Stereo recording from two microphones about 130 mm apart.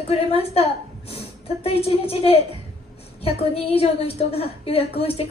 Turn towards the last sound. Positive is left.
turn(degrees=50)  # may be behind; listen again after turning